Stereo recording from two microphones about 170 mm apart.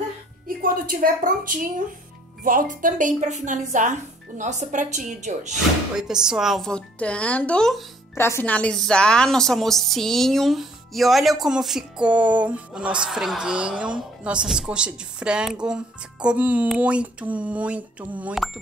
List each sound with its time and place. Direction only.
0.5 s a woman's voice: 55° right (ahead or behind)
5.9 s speech: 5° right (ahead or behind)